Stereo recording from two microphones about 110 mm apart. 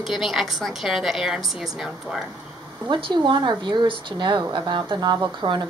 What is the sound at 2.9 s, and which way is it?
Speech, 50° right (ahead or behind).